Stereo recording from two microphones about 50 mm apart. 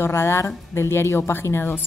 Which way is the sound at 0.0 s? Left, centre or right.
Left.